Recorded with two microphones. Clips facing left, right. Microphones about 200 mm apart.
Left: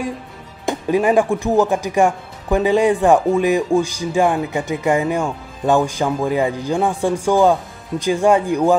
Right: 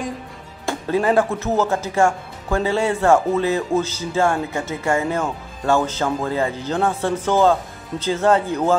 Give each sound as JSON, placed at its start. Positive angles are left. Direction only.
{"t": 0.7, "sound": "speech", "side_deg": 15}